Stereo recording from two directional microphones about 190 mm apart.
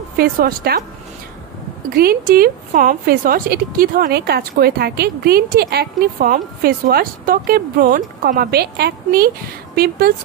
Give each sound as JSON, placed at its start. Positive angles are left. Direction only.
{"t": 0.2, "sound": "a woman's voice", "side_deg": -50}
{"t": 2.0, "sound": "a woman's voice", "side_deg": -55}